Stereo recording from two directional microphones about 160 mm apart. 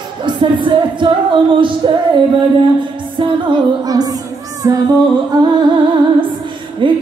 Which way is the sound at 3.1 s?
25° right (ahead or behind).